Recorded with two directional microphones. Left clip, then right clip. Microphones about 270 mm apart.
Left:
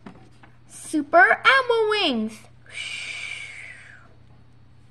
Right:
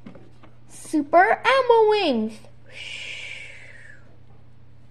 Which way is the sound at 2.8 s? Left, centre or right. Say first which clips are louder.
Left 3 dB; left.